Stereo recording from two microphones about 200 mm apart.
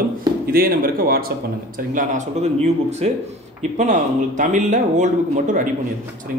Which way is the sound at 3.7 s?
35° right (ahead or behind).